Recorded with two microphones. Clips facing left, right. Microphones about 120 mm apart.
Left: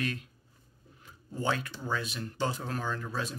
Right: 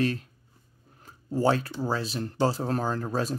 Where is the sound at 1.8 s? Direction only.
35° right (ahead or behind).